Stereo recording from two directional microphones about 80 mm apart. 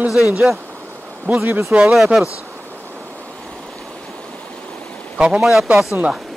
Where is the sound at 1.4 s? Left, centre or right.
Right.